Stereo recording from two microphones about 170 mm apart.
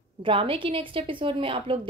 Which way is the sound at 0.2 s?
30° right (ahead or behind).